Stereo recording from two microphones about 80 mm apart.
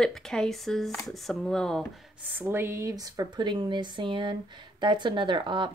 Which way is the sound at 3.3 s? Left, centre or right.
Right.